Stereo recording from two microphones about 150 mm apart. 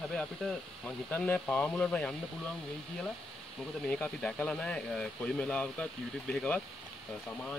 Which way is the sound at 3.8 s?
10° left (ahead or behind).